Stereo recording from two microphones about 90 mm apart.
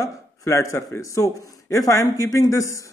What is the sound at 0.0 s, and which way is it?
A man's voice, 35° left (ahead or behind).